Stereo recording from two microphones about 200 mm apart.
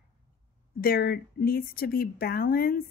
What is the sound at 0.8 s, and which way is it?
Speech, 50° left (ahead or behind).